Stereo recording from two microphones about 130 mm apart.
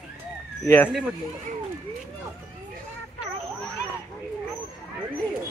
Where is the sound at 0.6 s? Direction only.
15° left (ahead or behind).